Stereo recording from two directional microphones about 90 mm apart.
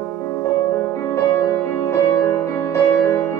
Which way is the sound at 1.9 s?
30° left (ahead or behind).